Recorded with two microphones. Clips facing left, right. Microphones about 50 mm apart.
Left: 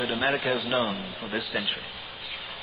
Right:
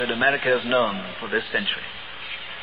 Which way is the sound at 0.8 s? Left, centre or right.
Right.